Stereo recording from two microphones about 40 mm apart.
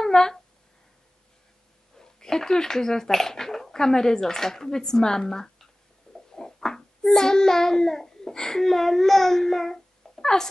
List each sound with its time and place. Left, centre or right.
0.0 s a sound: centre
2.0 s speech: centre
6.3 s child singing: centre